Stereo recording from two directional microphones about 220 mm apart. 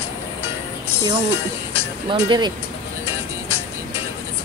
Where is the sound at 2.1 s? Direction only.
20° right (ahead or behind).